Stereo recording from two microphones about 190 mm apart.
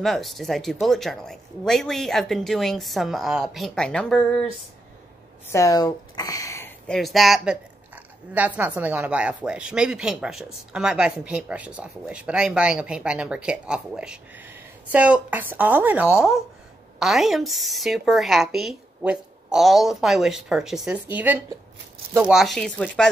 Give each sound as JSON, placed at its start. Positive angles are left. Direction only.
{"t": 0.0, "sound": "a woman's voice", "side_deg": 0}
{"t": 5.5, "sound": "speech", "side_deg": 20}
{"t": 7.0, "sound": "a woman's voice", "side_deg": 0}